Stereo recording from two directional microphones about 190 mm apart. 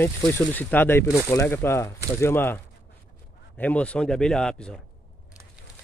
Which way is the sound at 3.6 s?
5° left (ahead or behind).